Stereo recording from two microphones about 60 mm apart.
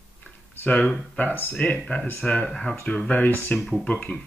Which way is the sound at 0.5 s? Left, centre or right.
Left.